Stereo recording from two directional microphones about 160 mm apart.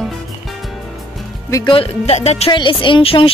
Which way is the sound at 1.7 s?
40° left (ahead or behind).